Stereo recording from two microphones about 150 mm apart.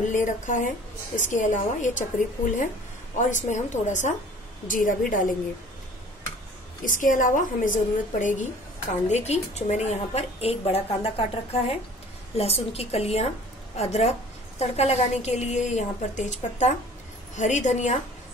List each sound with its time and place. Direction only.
0.1 s a woman's voice: 60° left (ahead or behind)
6.8 s a woman's voice: 60° left (ahead or behind)